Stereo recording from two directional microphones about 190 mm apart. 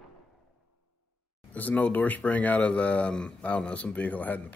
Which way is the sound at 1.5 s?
10° left (ahead or behind).